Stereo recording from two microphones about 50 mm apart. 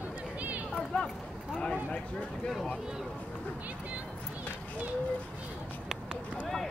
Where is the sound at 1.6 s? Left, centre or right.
Left.